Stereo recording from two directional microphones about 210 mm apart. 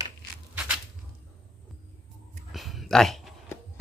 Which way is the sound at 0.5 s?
5° right (ahead or behind).